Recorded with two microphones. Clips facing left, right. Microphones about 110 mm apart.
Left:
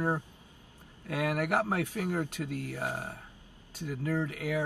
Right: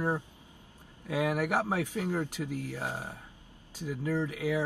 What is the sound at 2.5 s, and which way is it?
Speech, 65° left (ahead or behind).